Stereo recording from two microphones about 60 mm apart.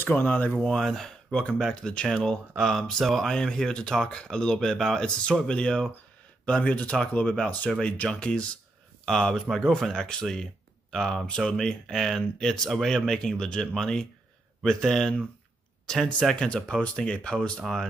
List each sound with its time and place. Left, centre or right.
0.0 s speech: left
0.6 s speech: centre